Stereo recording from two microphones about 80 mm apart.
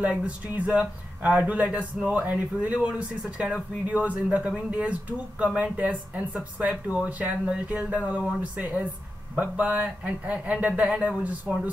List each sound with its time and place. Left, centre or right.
0.0 s speech: centre